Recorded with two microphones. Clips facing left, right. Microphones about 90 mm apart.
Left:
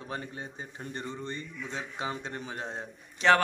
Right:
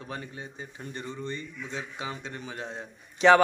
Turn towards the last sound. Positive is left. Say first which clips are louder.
# right 4 dB
turn(degrees=-5)  # may be behind; listen again after turning